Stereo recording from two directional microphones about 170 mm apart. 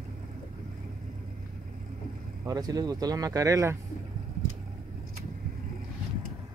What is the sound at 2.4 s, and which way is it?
Speech, 20° right (ahead or behind).